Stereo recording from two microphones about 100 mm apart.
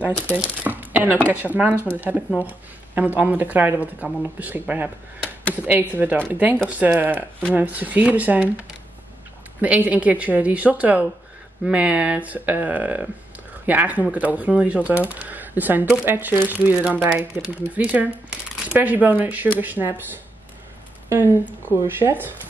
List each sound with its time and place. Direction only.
0.4 s speech: 20° right (ahead or behind)
21.1 s speech: 20° right (ahead or behind)